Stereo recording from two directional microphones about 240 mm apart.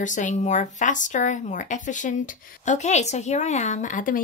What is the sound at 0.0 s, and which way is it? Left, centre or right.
A woman's voice, left.